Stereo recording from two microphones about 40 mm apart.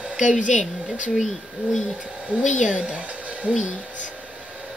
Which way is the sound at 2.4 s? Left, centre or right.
Right.